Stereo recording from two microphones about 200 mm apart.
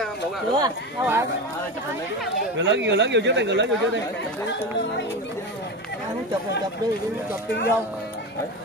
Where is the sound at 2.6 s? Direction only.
65° right (ahead or behind).